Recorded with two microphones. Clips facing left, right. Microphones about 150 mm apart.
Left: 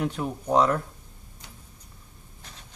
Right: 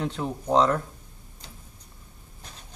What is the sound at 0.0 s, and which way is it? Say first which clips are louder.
Speech: left 1 dB; 10° left (ahead or behind).